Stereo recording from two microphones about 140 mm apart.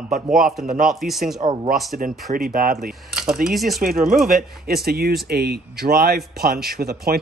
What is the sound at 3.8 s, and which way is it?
Speech, 90° right.